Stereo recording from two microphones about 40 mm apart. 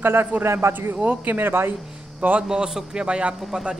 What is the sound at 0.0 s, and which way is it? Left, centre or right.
Speech, right.